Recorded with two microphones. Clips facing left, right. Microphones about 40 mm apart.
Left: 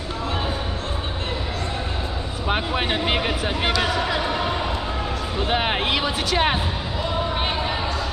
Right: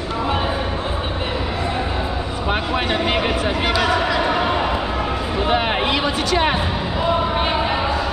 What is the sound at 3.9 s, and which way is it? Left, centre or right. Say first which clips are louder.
Basketball bounce: right 5 dB; right.